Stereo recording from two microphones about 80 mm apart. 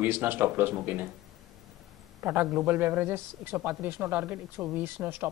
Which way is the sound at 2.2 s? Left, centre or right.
Right.